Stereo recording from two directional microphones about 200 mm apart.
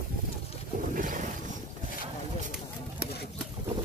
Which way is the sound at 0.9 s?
40° right (ahead or behind).